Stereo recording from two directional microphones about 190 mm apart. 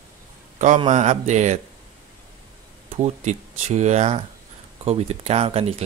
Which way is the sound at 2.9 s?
35° right (ahead or behind).